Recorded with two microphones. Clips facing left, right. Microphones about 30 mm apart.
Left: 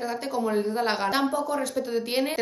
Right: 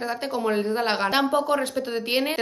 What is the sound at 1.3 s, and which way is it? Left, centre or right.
Speech, right.